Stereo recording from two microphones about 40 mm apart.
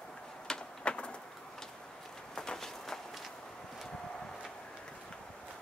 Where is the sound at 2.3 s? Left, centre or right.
Centre.